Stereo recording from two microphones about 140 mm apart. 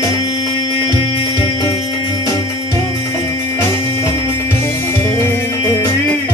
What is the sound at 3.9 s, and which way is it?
Music, 20° left (ahead or behind).